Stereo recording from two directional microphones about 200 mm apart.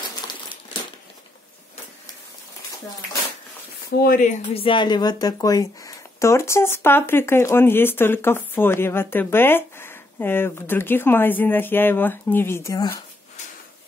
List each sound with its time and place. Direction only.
4.0 s speech: 45° left (ahead or behind)
4.6 s speech: 25° left (ahead or behind)